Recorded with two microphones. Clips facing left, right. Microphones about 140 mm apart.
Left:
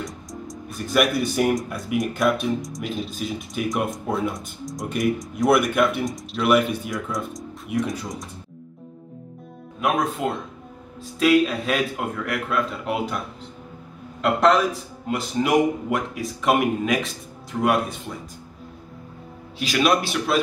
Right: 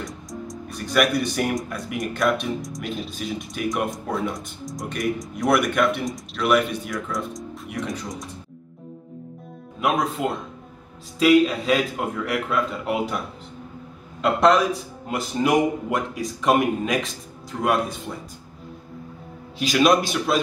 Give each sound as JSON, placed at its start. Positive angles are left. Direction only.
{"t": 0.0, "sound": "speech", "side_deg": 0}
{"t": 9.8, "sound": "speech", "side_deg": 0}
{"t": 14.2, "sound": "speech", "side_deg": 0}
{"t": 19.6, "sound": "speech", "side_deg": 0}